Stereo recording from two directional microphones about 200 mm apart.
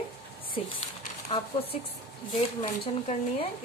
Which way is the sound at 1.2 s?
30° left (ahead or behind).